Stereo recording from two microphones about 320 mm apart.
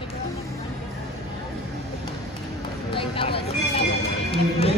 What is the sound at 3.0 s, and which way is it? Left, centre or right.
Vehicle, centre.